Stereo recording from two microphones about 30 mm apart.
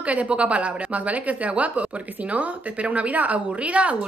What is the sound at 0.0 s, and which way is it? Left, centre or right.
A woman's voice, right.